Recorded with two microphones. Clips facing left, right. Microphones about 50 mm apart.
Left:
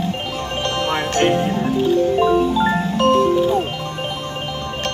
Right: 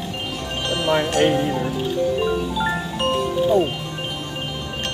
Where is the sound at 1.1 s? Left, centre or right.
Left.